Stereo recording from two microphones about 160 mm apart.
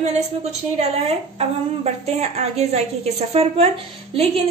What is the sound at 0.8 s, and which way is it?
A woman's voice, 40° right (ahead or behind).